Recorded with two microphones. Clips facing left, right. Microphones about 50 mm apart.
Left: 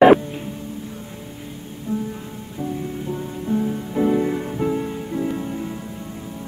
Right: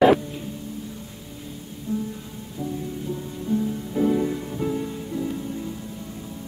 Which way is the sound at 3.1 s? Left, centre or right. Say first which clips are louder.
Left 2 dB; left.